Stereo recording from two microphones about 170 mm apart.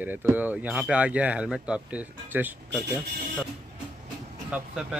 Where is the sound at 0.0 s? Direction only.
10° right (ahead or behind).